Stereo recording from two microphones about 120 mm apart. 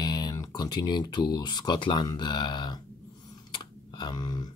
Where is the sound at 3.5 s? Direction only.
40° left (ahead or behind).